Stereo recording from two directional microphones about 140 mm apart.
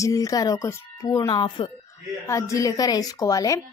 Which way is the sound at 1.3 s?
35° left (ahead or behind).